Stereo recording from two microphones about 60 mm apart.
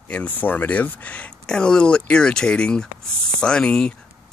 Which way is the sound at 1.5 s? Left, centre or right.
Centre.